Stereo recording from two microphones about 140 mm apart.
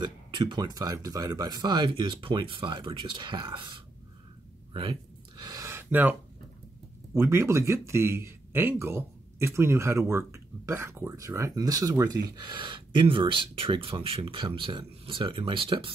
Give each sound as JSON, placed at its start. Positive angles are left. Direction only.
{"t": 0.0, "sound": "speech", "side_deg": -35}
{"t": 5.4, "sound": "gasp", "side_deg": -25}
{"t": 7.2, "sound": "speech", "side_deg": -20}